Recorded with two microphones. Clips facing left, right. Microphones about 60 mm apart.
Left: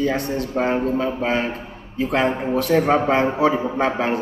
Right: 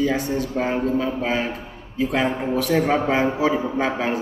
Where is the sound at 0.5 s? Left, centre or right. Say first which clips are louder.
Left 4 dB; centre.